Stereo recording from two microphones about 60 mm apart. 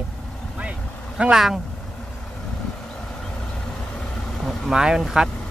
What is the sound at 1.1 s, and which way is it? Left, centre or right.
Speech, centre.